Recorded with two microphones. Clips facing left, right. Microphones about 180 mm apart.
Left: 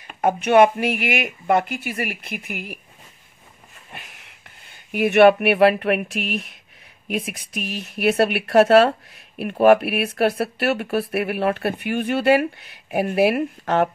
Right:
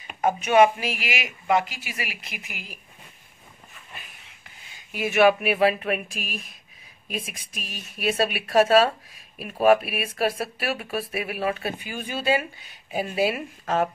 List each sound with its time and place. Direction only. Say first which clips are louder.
0.2 s speech: left 3 dB; 65° left (ahead or behind)
3.9 s speech: left 5 dB; 75° left (ahead or behind)